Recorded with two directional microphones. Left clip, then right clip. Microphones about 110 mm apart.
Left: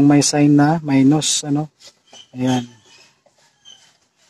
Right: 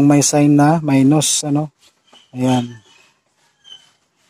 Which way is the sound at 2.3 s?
30° right (ahead or behind).